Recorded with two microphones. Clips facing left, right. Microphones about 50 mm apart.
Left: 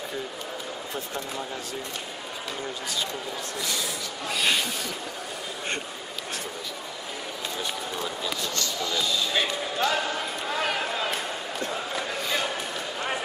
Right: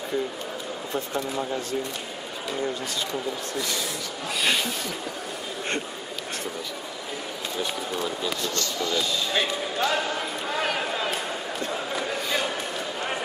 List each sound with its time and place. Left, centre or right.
4.3 s speech: centre
7.5 s speech: centre
11.7 s a sound: centre